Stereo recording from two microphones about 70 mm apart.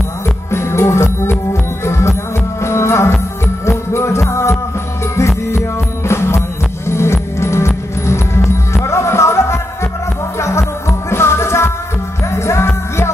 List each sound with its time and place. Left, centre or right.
0.5 s music: left
6.0 s music: left
10.9 s music: left